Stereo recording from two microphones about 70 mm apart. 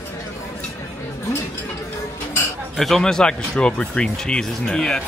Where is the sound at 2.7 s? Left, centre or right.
Centre.